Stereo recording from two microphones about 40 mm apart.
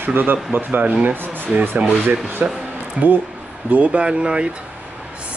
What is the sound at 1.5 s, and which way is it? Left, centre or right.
Speech, right.